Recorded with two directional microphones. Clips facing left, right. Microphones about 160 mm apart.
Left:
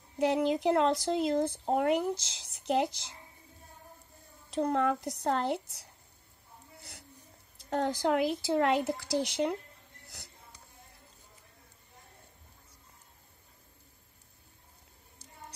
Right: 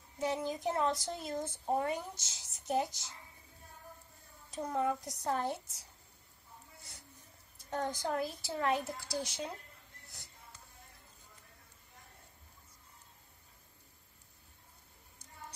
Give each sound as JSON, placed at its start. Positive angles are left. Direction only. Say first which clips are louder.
{"t": 0.2, "sound": "speech", "louder": "left 8 dB", "side_deg": 80}
{"t": 4.6, "sound": "speech", "louder": "left 6 dB", "side_deg": 80}
{"t": 6.8, "sound": "a sound", "louder": "left 5 dB", "side_deg": 75}
{"t": 7.7, "sound": "speech", "louder": "left 7 dB", "side_deg": 80}